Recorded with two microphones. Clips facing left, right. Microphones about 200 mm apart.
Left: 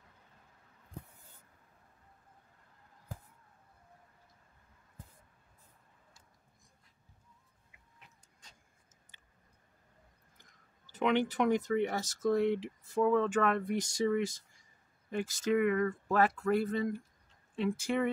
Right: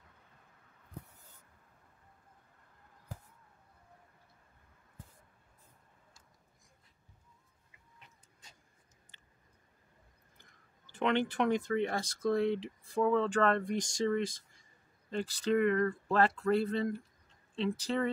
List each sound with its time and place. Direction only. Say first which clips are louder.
8.0 s pant: even; 5° right (ahead or behind)
11.1 s speech: left 1 dB; 10° left (ahead or behind)